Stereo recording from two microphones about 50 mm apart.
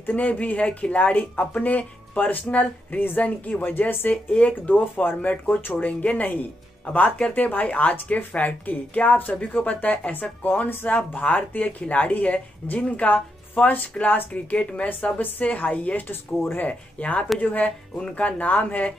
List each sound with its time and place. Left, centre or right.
0.0 s speech: left
4.1 s speech: left
10.8 s speech: left
16.1 s speech: left
16.6 s speech: left
17.6 s speech: left